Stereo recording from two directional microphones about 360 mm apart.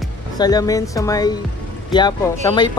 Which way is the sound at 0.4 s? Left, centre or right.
Centre.